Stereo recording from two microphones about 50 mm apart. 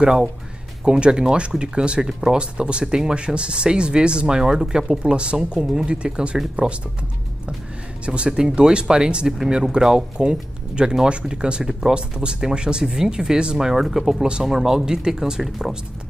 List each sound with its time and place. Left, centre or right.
0.0 s speech: centre
2.0 s speech: centre
2.3 s speech: centre
8.0 s speech: right